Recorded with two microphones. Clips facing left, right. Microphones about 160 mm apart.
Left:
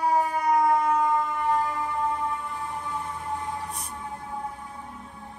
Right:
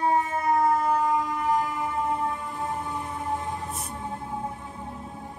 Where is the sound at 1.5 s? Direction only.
20° right (ahead or behind).